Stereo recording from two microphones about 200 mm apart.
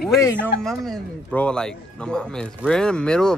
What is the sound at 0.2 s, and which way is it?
A man's voice, 5° left (ahead or behind).